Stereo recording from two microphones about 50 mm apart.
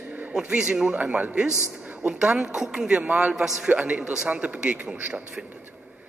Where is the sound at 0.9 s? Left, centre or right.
Right.